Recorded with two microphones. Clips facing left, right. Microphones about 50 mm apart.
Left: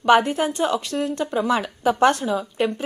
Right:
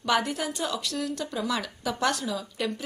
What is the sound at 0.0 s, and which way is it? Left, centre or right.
A woman's voice, left.